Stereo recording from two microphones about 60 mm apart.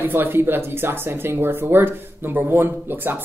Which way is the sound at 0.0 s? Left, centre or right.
Right.